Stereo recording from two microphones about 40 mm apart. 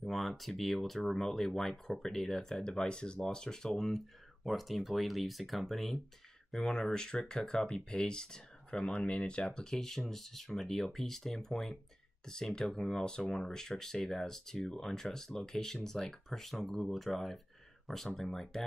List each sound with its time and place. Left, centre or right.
0.0 s speech: centre
4.5 s speech: centre
6.6 s speech: centre